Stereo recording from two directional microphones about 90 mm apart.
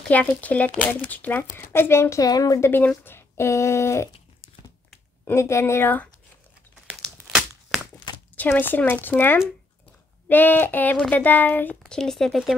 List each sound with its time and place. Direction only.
0.1 s speech: 15° left (ahead or behind); by 2.6 s 45° left (ahead or behind)
2.6 s speech: 25° left (ahead or behind)
5.2 s speech: 30° left (ahead or behind)
7.2 s a sound: 5° right (ahead or behind)
8.4 s speech: 20° left (ahead or behind)
10.2 s speech: 20° left (ahead or behind)
11.8 s speech: 5° left (ahead or behind)